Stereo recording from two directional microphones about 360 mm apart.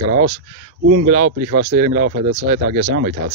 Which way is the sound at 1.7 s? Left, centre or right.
Centre.